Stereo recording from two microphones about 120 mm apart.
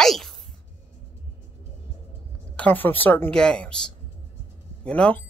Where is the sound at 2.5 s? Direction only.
15° left (ahead or behind).